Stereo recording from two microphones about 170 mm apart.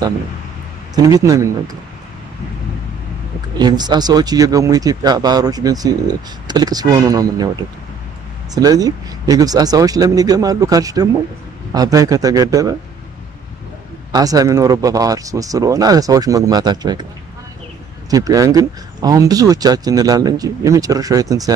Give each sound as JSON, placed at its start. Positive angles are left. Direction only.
{"t": 0.9, "sound": "speech", "side_deg": -20}
{"t": 3.5, "sound": "speech", "side_deg": -25}
{"t": 8.5, "sound": "speech", "side_deg": -20}
{"t": 14.1, "sound": "speech", "side_deg": -20}
{"t": 18.1, "sound": "speech", "side_deg": -20}